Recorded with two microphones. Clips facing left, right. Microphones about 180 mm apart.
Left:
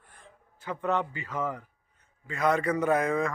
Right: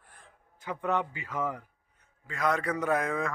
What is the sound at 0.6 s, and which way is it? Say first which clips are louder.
A man's voice: left 1 dB; 10° right (ahead or behind).